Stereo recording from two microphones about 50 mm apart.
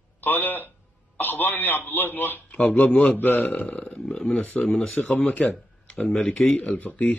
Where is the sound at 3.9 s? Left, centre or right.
Centre.